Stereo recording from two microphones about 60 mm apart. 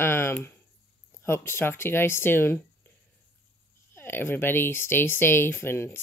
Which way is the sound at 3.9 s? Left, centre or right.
Left.